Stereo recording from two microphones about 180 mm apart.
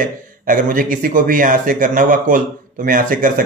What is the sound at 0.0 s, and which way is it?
Speech, 45° right (ahead or behind).